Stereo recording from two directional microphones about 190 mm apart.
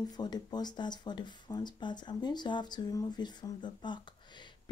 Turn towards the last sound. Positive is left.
turn(degrees=25)  # may be behind; listen again after turning